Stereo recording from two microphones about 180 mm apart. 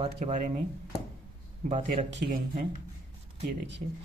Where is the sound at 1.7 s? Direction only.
35° right (ahead or behind).